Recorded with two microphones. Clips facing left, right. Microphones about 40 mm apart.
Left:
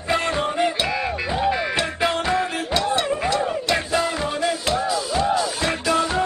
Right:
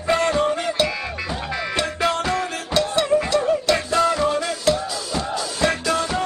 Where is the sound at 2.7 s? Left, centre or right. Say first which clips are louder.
Right 4 dB; centre.